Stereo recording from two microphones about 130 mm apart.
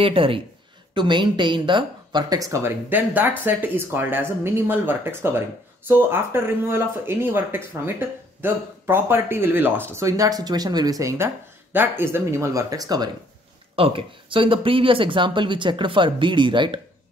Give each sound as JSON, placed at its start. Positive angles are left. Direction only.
{"t": 0.0, "sound": "speech", "side_deg": -45}
{"t": 13.7, "sound": "speech", "side_deg": -45}